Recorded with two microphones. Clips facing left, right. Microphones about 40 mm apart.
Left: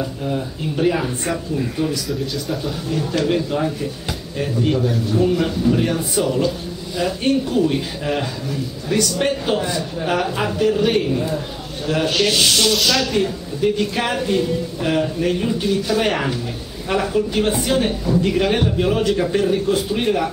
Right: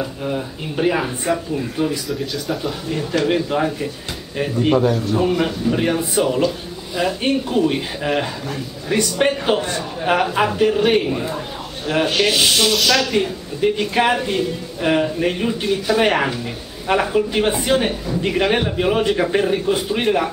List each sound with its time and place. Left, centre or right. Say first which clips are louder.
0.0 s speech: even; centre
2.0 s speech: even; centre
2.9 s a woman's voice: right 1 dB; centre
12.7 s speech: right 1 dB; centre
13.2 s a woman's voice: even; centre